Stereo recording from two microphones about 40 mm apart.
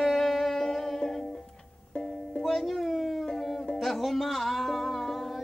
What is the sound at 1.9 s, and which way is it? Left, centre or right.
Music, left.